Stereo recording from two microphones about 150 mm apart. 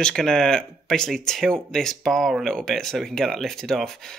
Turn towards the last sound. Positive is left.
turn(degrees=5)  # may be behind; listen again after turning